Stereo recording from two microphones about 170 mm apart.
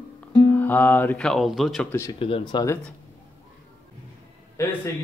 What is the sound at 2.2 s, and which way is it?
Speech, 30° left (ahead or behind).